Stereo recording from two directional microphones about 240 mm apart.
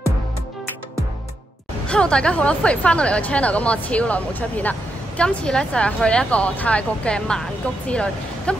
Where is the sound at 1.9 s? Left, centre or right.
Centre.